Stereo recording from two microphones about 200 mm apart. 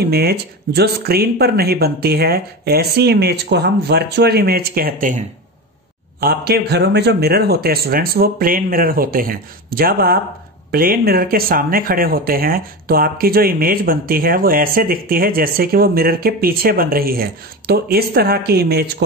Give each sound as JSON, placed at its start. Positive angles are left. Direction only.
{"t": 0.0, "sound": "speech", "side_deg": -50}
{"t": 6.2, "sound": "speech", "side_deg": -55}